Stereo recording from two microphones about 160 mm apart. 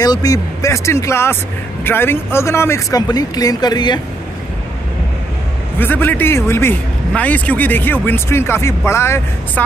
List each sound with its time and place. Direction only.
0.0 s speech: 25° left (ahead or behind)
5.8 s speech: 10° left (ahead or behind)